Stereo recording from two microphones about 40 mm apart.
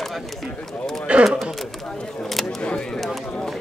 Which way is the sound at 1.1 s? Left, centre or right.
Right.